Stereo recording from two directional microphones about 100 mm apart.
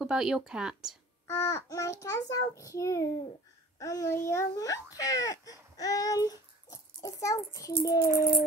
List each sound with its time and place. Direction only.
0.0 s speech: 5° right (ahead or behind)
1.2 s a child's voice: 30° left (ahead or behind)